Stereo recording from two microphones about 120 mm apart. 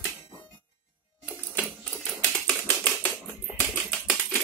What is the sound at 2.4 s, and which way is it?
Typewriter, 10° left (ahead or behind).